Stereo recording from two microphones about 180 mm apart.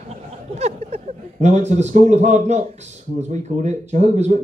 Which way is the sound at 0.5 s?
35° right (ahead or behind).